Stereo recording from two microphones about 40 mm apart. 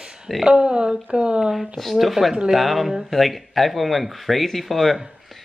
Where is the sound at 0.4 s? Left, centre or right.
Right.